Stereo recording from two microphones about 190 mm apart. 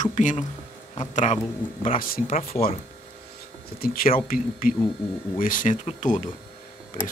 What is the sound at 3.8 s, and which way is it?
Speech, 50° left (ahead or behind).